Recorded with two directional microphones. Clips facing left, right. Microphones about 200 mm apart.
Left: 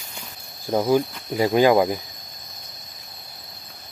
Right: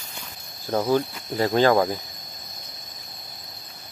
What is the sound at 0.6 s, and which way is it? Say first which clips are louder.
Speech: left 2 dB; 10° left (ahead or behind).